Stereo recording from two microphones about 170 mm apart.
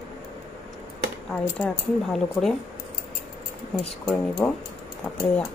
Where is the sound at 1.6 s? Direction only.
Centre (ahead or behind).